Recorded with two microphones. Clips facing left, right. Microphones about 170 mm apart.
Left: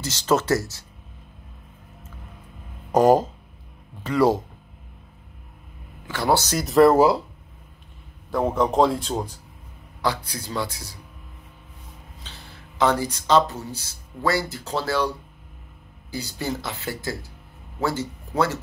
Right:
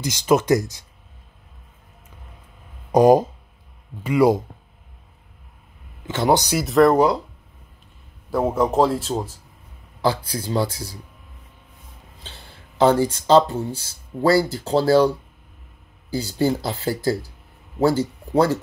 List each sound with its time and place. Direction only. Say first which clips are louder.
0.0 s speech: right 3 dB; 15° right (ahead or behind)
2.9 s speech: right 3 dB; 10° right (ahead or behind)
6.0 s speech: right 3 dB; 20° right (ahead or behind)
6.6 s a man's voice: left 1 dB; centre (ahead or behind)
8.3 s a man's voice: right 2 dB; 5° right (ahead or behind)
10.0 s speech: right 4 dB; 30° right (ahead or behind)
12.2 s speech: right 2 dB; 30° right (ahead or behind)